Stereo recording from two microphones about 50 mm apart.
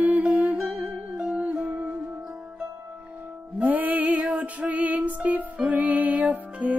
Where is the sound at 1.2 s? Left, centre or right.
Right.